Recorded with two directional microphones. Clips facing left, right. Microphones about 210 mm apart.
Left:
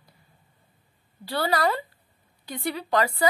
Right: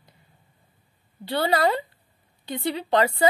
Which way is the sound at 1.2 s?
20° right (ahead or behind).